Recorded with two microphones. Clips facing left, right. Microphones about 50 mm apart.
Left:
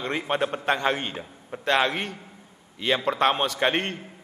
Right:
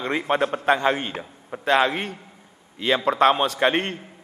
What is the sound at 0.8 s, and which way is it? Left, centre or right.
Speech, centre.